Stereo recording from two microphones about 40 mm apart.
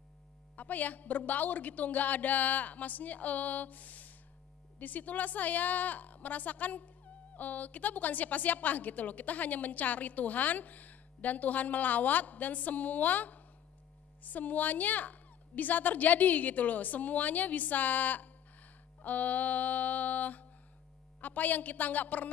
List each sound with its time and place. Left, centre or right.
0.6 s a woman's voice: left